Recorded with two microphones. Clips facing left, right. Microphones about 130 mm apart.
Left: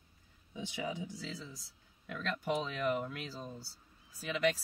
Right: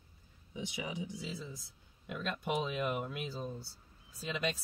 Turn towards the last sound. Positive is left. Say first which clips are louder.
# left 4 dB
turn(degrees=-25)  # may be behind; listen again after turning